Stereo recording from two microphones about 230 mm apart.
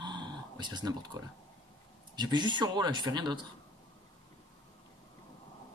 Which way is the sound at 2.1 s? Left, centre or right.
Centre.